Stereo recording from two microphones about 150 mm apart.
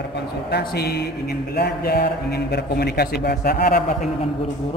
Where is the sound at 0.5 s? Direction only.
90° left.